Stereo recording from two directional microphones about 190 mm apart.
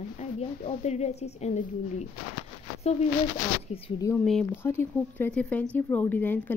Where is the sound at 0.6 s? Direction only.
35° left (ahead or behind).